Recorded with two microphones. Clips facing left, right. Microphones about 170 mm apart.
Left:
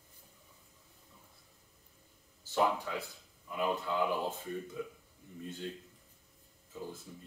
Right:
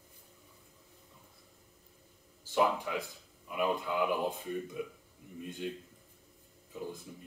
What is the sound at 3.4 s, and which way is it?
Speech, 15° right (ahead or behind).